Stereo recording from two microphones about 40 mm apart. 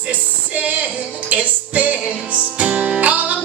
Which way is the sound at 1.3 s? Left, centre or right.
Right.